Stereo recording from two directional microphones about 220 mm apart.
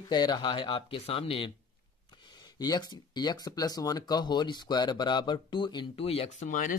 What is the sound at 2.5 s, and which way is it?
Speech, 20° left (ahead or behind).